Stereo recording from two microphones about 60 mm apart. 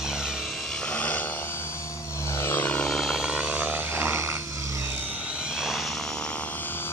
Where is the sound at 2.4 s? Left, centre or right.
Left.